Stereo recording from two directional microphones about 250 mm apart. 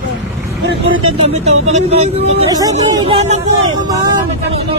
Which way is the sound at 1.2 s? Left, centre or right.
Right.